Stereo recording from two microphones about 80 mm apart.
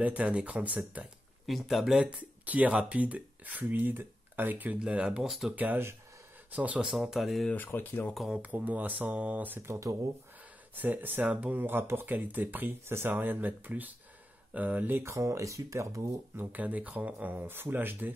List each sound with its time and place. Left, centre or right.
0.0 s speech: centre
1.4 s speech: centre
5.6 s speech: right
6.9 s speech: centre
7.5 s speech: left
8.3 s speech: centre; by 9.9 s right
10.8 s speech: right
15.0 s speech: right
16.3 s speech: centre